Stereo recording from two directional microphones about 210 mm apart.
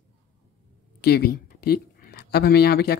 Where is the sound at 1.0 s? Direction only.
50° left (ahead or behind).